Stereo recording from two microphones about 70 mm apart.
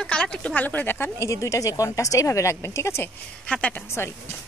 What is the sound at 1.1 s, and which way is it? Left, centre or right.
Speech, left.